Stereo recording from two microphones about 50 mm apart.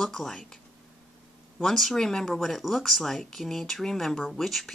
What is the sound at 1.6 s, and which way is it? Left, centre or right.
Speech, centre.